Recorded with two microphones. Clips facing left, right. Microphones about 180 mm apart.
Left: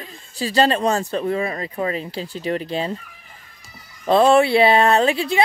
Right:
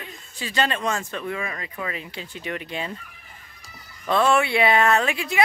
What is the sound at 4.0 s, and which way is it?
A woman's voice, 35° left (ahead or behind).